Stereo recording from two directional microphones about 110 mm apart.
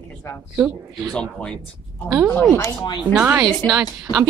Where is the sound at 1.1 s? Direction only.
10° left (ahead or behind).